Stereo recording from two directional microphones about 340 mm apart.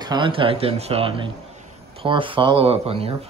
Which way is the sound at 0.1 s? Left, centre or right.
Centre.